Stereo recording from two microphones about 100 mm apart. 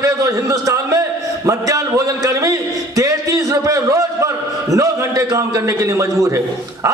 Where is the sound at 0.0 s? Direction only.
35° right (ahead or behind).